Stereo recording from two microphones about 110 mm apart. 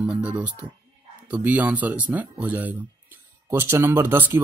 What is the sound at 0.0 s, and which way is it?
Speech, 10° right (ahead or behind).